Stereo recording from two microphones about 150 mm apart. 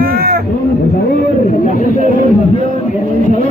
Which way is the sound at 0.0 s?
90° right.